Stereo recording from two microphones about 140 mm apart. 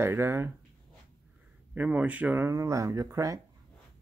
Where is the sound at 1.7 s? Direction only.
10° right (ahead or behind).